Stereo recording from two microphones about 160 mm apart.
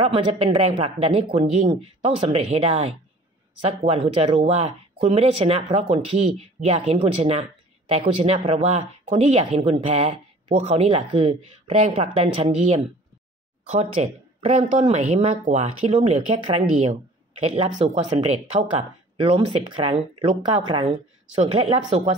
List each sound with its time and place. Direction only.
0.0 s speech: 35° right (ahead or behind)
16.3 s speech: 30° right (ahead or behind)
17.4 s speech: 40° right (ahead or behind)
19.1 s speech: 35° right (ahead or behind)